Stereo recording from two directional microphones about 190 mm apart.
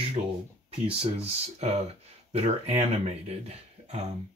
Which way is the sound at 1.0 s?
35° right (ahead or behind).